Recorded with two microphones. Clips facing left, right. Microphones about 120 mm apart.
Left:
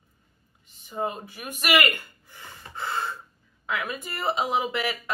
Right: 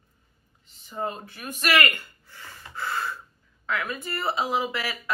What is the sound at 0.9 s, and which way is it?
Speech, 15° left (ahead or behind).